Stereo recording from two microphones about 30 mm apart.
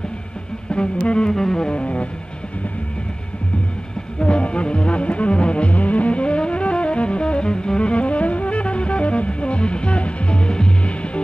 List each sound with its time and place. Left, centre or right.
0.9 s music: left
1.3 s music: centre
1.7 s music: left
4.2 s music: left
5.7 s music: left
10.8 s music: left